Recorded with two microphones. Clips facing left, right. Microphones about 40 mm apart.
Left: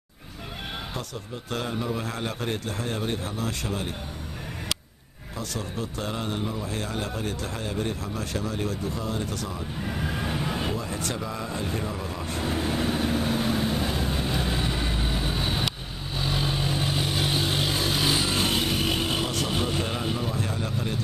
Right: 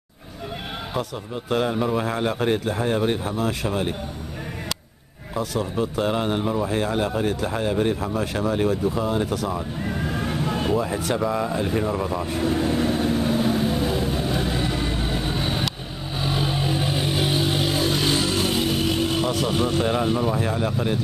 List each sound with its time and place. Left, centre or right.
1.5 s a man's voice: centre
5.3 s a man's voice: centre
8.6 s vehicle: centre
10.8 s a man's voice: centre
11.2 s vehicle: centre
19.8 s a man's voice: centre